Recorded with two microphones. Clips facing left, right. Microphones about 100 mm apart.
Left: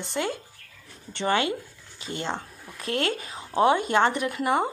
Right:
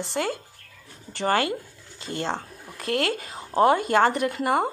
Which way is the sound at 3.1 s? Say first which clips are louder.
Right 2 dB; 35° right (ahead or behind).